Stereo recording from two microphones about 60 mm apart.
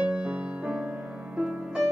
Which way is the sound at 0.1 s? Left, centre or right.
Centre.